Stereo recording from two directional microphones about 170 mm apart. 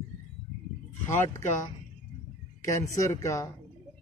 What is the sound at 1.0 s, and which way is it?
Speech, 50° left (ahead or behind).